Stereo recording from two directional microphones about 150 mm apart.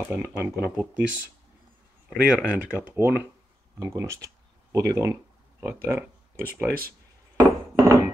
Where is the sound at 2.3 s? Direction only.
10° right (ahead or behind).